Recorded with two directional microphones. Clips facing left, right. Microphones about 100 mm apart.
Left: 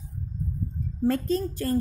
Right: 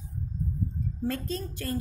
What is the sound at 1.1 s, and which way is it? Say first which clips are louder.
Speech: left 10 dB; 45° left (ahead or behind).